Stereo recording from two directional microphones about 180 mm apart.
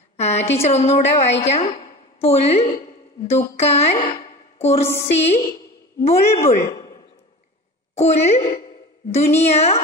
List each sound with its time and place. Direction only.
0.2 s a woman's voice: 35° left (ahead or behind)
7.9 s speech: 35° left (ahead or behind)